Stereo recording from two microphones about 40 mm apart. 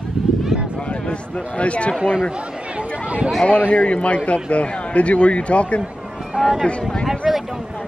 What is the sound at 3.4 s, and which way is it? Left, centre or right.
Speech, left.